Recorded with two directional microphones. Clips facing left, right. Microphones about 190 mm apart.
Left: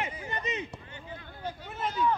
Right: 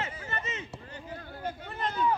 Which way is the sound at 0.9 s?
45° right (ahead or behind).